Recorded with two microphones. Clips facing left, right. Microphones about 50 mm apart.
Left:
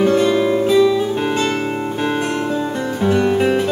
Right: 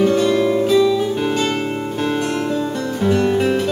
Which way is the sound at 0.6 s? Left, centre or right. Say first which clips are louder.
Left 1 dB; centre.